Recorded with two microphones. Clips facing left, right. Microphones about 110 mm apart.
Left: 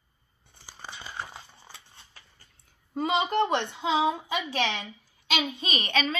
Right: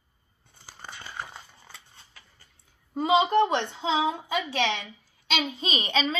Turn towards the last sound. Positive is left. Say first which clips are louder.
# right 1 dB
turn(degrees=-20)  # may be behind; listen again after turning